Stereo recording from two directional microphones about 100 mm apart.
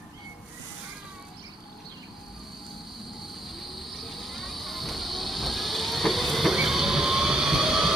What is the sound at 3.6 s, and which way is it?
Train, centre (ahead or behind).